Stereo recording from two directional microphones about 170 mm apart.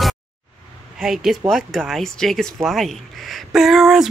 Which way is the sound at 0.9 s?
Centre (ahead or behind).